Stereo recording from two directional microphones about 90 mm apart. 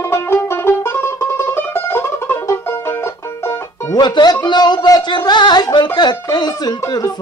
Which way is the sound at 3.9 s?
50° left (ahead or behind).